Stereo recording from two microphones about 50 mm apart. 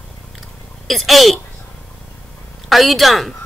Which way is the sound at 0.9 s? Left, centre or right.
Centre.